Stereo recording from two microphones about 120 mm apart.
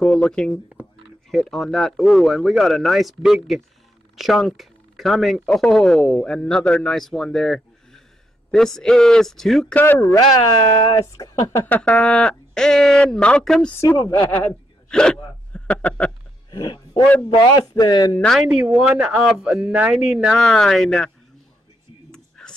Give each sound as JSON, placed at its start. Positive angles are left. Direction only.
{"t": 0.0, "sound": "speech", "side_deg": 10}
{"t": 9.8, "sound": "speech", "side_deg": 20}
{"t": 13.7, "sound": "speech", "side_deg": 25}
{"t": 16.4, "sound": "a sound", "side_deg": 40}
{"t": 17.4, "sound": "speech", "side_deg": 35}
{"t": 18.5, "sound": "speech", "side_deg": -5}
{"t": 22.1, "sound": "a sound", "side_deg": 5}